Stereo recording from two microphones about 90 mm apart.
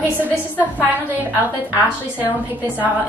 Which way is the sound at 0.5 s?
20° right (ahead or behind).